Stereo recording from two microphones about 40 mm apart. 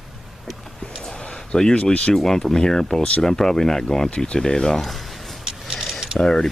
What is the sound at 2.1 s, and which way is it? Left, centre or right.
Speech, centre.